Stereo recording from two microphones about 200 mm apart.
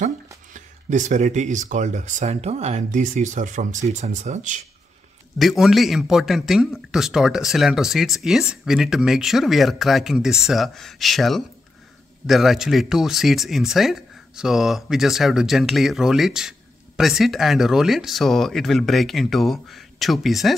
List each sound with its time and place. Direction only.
0.5 s speech: 40° right (ahead or behind)
5.4 s speech: centre (ahead or behind)